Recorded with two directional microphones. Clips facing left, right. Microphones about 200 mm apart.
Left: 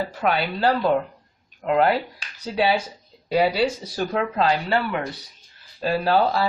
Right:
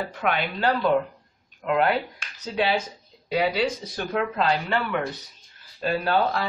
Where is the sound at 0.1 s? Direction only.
35° left (ahead or behind).